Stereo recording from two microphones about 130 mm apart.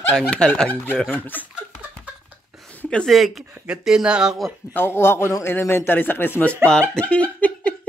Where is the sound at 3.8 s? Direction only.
5° right (ahead or behind).